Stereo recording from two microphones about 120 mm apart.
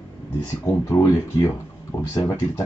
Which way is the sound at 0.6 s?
20° left (ahead or behind).